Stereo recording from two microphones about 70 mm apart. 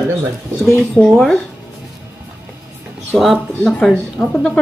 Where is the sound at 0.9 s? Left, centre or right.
Centre.